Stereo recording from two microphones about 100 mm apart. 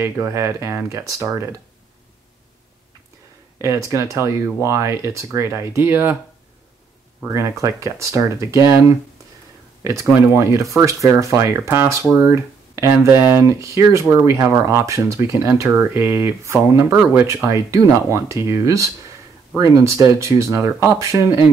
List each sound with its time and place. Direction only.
0.0 s speech: 30° right (ahead or behind)
3.5 s speech: 30° right (ahead or behind)
7.2 s speech: 30° right (ahead or behind)
10.3 s speech: 30° right (ahead or behind)
13.1 s speech: 15° right (ahead or behind)
13.4 s speech: 30° right (ahead or behind)